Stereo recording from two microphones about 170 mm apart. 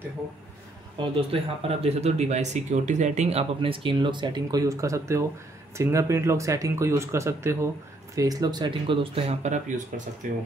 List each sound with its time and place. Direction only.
0.9 s speech: 30° right (ahead or behind)